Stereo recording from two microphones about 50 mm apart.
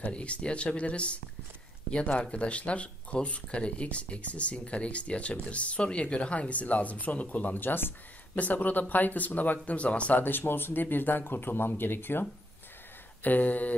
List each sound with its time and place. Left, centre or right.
0.1 s speech: left
10.2 s speech: left
13.2 s speech: left